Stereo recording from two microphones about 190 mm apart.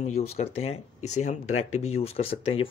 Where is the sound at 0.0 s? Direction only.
35° left (ahead or behind).